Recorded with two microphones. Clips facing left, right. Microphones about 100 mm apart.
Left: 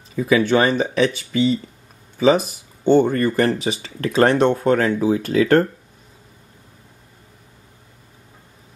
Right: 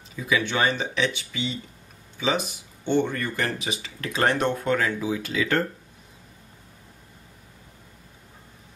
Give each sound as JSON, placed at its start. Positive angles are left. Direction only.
{"t": 0.1, "sound": "speech", "side_deg": 40}